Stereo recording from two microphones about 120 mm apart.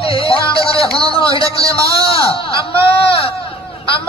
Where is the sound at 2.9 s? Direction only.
50° left (ahead or behind).